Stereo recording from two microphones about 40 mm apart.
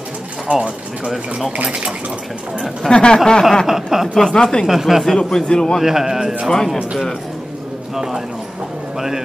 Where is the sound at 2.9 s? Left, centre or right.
Left.